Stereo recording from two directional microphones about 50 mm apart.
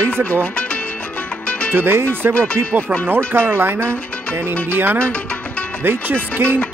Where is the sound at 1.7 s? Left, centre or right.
Right.